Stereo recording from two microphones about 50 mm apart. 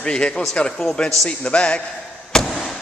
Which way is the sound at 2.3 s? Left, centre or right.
Centre.